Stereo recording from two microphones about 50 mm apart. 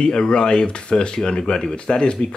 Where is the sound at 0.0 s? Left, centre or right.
Centre.